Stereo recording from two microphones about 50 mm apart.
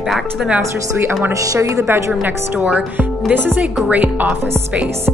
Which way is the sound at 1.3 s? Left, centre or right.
Right.